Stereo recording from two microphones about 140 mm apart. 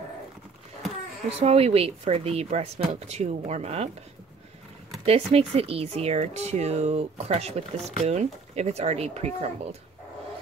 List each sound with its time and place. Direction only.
1.4 s speech: 45° right (ahead or behind)
5.0 s speech: 45° right (ahead or behind)